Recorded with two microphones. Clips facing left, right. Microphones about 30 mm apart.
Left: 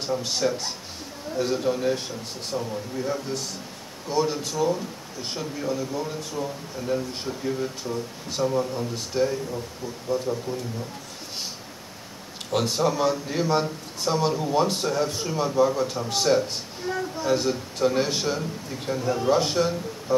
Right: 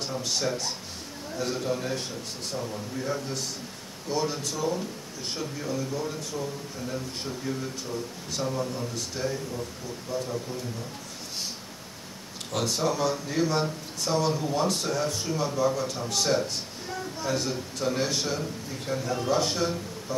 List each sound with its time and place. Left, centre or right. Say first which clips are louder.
0.0 s a man's voice: left 4 dB; centre
12.5 s a man's voice: left 4 dB; centre